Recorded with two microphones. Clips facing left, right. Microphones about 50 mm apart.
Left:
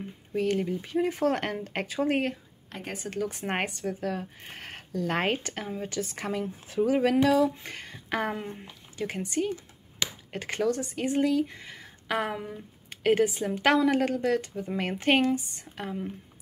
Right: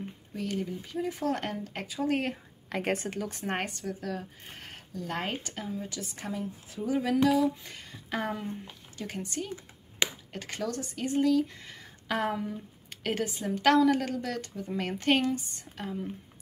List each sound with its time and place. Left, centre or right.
0.3 s speech: left
3.0 s speech: centre
3.4 s speech: left
6.1 s speech: left
6.4 s speech: left
10.0 s a sound: right
10.3 s speech: left